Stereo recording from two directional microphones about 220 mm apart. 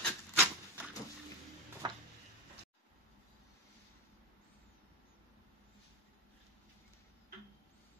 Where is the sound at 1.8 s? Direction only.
20° right (ahead or behind).